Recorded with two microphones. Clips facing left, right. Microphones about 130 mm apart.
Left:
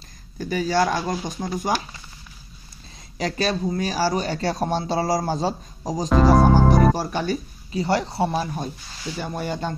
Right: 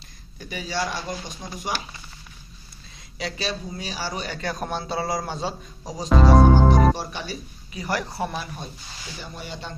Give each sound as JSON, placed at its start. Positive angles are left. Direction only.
{"t": 0.4, "sound": "speech", "side_deg": 40}
{"t": 3.2, "sound": "a man's voice", "side_deg": 45}
{"t": 6.0, "sound": "speech", "side_deg": 0}
{"t": 6.5, "sound": "music", "side_deg": 10}
{"t": 7.0, "sound": "speech", "side_deg": 45}
{"t": 7.7, "sound": "a woman's voice", "side_deg": 25}
{"t": 9.2, "sound": "speech", "side_deg": 50}